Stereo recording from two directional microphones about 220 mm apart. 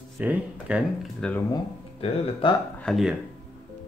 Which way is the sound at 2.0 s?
25° left (ahead or behind).